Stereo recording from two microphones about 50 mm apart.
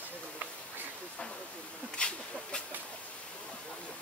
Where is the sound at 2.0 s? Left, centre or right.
Centre.